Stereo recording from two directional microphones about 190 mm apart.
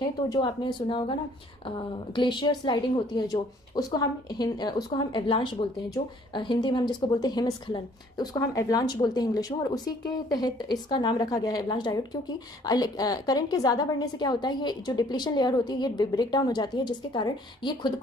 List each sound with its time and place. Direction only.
0.3 s a woman's voice: 25° left (ahead or behind)
2.1 s a woman's voice: 25° left (ahead or behind)